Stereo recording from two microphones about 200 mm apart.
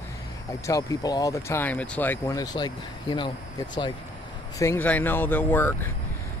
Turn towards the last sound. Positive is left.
turn(degrees=10)  # may be behind; listen again after turning